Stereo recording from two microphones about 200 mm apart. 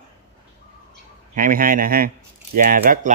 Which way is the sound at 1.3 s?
45° right (ahead or behind).